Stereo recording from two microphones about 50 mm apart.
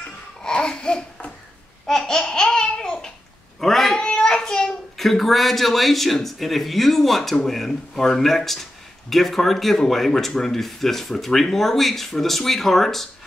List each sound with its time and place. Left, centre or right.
0.4 s babbling: centre
1.9 s laughter: centre
3.6 s speech: centre
4.0 s a child's voice: centre